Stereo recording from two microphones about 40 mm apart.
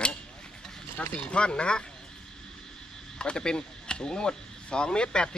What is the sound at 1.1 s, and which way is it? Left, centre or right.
Speech, left.